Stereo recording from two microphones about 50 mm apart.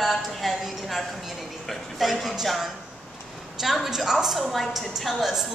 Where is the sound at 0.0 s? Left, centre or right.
Centre.